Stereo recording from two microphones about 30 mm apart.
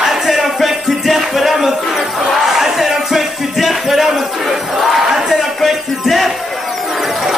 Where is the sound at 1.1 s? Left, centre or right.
Centre.